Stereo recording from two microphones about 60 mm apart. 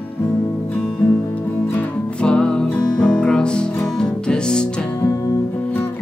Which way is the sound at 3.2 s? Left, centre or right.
Centre.